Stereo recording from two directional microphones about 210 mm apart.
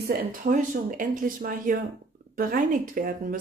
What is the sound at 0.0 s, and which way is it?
A woman's voice, 45° right (ahead or behind).